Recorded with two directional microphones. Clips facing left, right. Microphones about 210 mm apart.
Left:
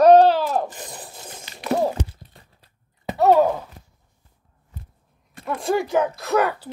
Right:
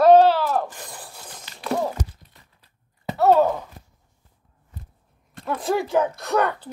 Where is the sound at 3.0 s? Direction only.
15° left (ahead or behind).